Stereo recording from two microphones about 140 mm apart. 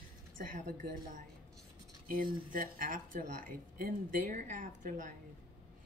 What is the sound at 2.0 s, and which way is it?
Speech, 90° right.